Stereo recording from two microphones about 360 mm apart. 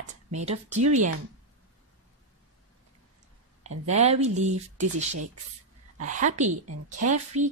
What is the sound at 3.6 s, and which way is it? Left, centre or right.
Speech, centre.